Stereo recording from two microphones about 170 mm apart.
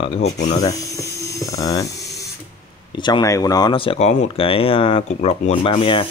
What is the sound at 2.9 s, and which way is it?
Speech, 25° left (ahead or behind).